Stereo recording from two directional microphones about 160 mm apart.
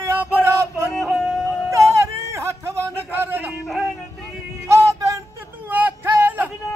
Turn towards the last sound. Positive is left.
turn(degrees=-15)  # may be behind; listen again after turning